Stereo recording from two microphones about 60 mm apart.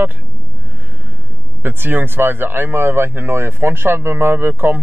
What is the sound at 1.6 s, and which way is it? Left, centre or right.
Speech, right.